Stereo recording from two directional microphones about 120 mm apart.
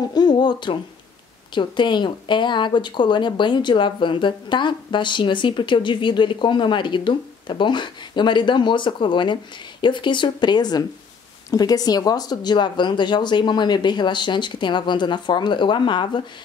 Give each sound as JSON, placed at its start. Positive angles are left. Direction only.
{"t": 0.1, "sound": "speech", "side_deg": 35}